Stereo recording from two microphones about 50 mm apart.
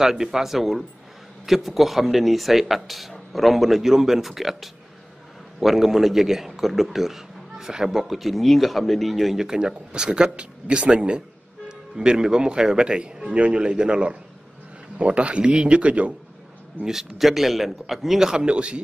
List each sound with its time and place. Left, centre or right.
0.0 s a man's voice: centre; by 16.2 s right
16.8 s speech: centre
18.3 s a man's voice: centre